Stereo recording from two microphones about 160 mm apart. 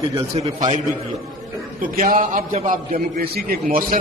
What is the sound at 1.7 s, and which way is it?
A man's voice, 60° right (ahead or behind).